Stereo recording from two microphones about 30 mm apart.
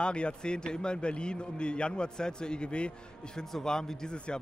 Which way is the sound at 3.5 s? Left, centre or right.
Left.